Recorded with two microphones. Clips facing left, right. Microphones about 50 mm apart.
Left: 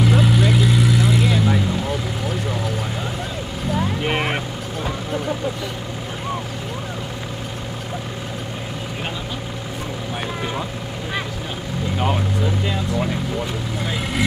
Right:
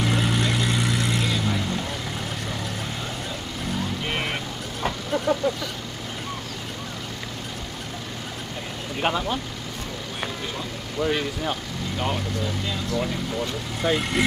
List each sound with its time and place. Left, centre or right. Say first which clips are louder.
0.0 s vehicle: left 6 dB; centre
4.0 s music: left 6 dB; left
4.8 s vehicle: right 1 dB; centre
12.0 s vehicle: left 4 dB; centre
13.8 s vehicle: right 4 dB; centre